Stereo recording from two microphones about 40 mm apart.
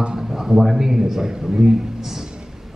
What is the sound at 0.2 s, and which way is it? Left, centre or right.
A man's voice, centre.